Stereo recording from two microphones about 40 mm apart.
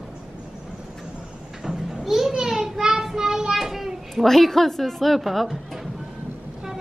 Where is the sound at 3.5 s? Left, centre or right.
Centre.